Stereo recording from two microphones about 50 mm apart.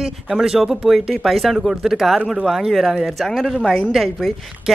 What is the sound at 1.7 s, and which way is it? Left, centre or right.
Speech, centre.